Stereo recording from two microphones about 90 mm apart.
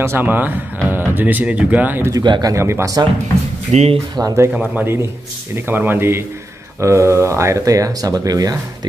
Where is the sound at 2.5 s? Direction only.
30° right (ahead or behind).